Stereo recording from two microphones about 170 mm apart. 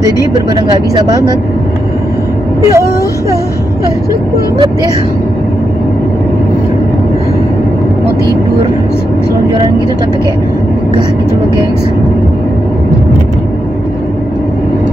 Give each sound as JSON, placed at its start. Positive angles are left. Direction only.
{"t": 0.0, "sound": "speech", "side_deg": -20}
{"t": 2.7, "sound": "speech", "side_deg": -20}